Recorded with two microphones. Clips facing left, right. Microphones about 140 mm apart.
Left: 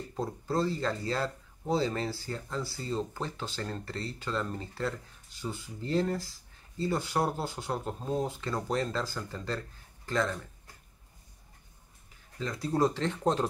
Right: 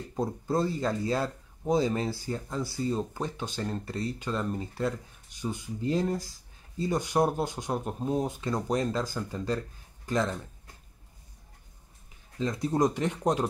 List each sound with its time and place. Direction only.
0.1 s speech: 15° right (ahead or behind)
12.4 s speech: 20° right (ahead or behind)